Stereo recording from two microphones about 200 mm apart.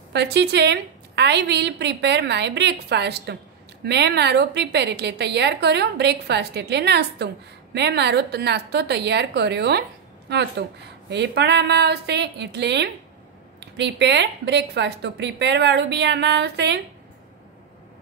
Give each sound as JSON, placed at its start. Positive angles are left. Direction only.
{"t": 0.1, "sound": "a woman's voice", "side_deg": -55}